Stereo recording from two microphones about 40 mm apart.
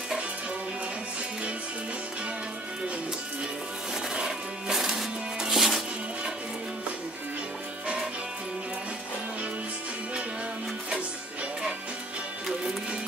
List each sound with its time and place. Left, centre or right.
4.1 s music: centre